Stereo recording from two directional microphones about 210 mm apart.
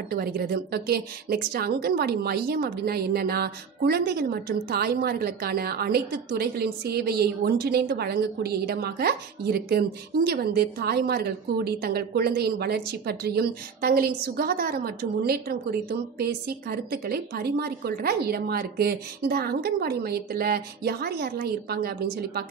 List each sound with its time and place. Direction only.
0.1 s a woman's voice: 45° right (ahead or behind)